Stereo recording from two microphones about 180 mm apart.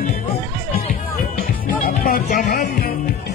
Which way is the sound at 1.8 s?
55° left (ahead or behind).